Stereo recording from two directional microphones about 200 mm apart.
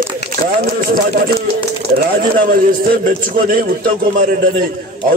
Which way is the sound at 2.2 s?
45° right (ahead or behind).